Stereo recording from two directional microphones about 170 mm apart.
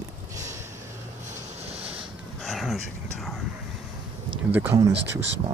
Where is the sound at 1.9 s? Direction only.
Centre (ahead or behind).